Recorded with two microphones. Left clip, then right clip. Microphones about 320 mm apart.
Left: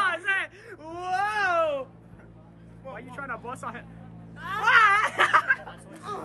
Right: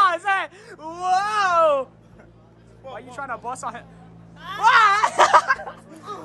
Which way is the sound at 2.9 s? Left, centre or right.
Centre.